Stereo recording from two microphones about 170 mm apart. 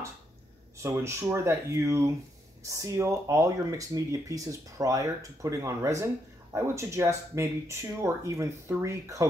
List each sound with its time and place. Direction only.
0.8 s speech: 15° right (ahead or behind)